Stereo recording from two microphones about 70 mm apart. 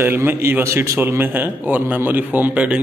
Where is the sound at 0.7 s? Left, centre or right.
Right.